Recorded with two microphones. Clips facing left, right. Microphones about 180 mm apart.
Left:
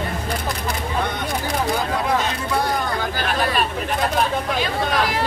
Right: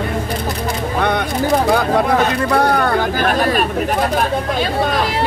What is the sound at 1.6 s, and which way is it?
Speech, 65° right (ahead or behind).